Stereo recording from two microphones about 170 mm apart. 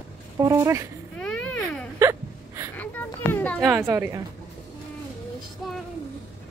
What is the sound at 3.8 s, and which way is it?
Speech, 15° right (ahead or behind).